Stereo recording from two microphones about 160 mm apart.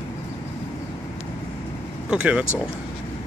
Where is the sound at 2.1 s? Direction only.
5° right (ahead or behind).